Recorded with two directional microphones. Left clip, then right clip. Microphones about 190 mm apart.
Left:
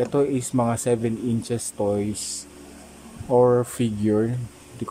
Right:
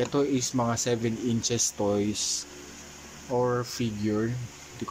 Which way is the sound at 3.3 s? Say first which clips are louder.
Left 9 dB; 15° left (ahead or behind).